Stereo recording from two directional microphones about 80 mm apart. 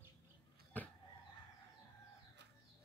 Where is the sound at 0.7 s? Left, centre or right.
Left.